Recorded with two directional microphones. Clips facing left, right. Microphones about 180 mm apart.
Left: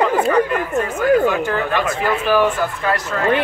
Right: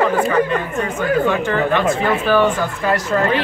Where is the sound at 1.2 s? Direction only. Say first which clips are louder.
Right 1 dB; 5° left (ahead or behind).